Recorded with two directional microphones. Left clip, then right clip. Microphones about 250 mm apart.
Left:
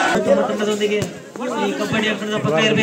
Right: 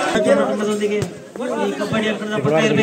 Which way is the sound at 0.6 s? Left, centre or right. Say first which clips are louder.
Left 1 dB; right.